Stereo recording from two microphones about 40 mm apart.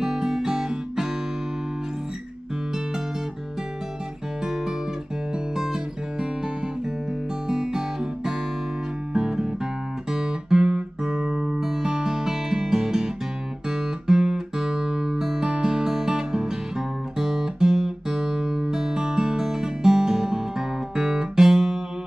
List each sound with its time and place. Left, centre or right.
0.0 s guitar: centre
5.6 s guitar: centre
7.4 s guitar: centre
9.1 s music: right
10.1 s guitar: centre
15.4 s music: centre
17.2 s guitar: centre